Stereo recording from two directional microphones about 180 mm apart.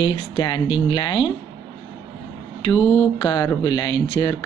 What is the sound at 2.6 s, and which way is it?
Speech, 20° left (ahead or behind).